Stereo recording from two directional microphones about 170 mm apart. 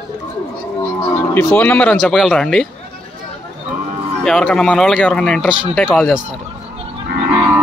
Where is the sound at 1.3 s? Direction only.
10° left (ahead or behind).